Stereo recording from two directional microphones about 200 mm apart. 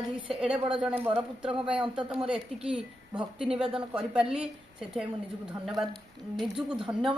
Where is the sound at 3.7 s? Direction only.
5° right (ahead or behind).